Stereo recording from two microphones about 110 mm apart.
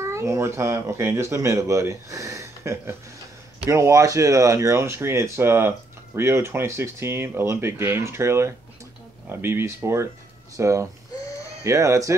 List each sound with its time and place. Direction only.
0.0 s speech: 25° right (ahead or behind)